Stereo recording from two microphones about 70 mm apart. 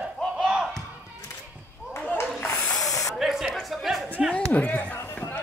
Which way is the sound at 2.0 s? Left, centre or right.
Left.